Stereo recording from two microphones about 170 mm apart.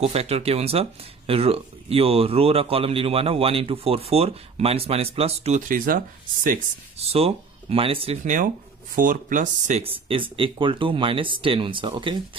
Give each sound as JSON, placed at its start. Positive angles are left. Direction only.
{"t": 0.0, "sound": "speech", "side_deg": -35}
{"t": 5.7, "sound": "speech", "side_deg": -55}
{"t": 7.0, "sound": "speech", "side_deg": -35}
{"t": 8.9, "sound": "speech", "side_deg": -50}